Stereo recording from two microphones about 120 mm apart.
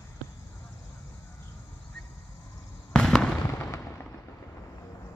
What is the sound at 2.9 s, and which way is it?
Fireworks, 5° left (ahead or behind).